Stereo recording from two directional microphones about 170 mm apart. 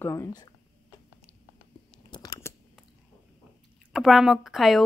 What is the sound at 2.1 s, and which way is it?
Scissors, 20° left (ahead or behind).